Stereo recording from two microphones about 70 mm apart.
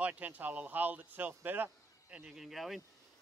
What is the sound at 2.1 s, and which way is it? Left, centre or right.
Speech, centre.